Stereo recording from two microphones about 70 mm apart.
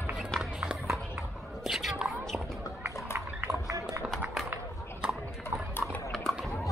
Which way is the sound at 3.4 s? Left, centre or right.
Right.